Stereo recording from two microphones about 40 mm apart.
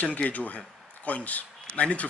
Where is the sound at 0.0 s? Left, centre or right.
Left.